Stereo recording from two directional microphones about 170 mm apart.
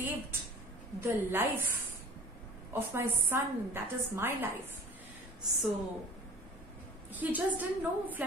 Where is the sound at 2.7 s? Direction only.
10° right (ahead or behind).